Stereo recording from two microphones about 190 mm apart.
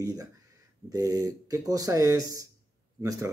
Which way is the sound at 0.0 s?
20° right (ahead or behind).